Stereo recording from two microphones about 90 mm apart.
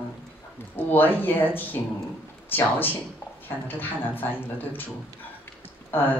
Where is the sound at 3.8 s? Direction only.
20° left (ahead or behind).